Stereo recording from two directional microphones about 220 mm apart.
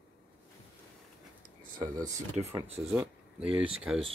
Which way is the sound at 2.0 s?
35° right (ahead or behind).